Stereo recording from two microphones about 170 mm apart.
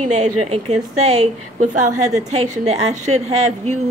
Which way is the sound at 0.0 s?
40° right (ahead or behind).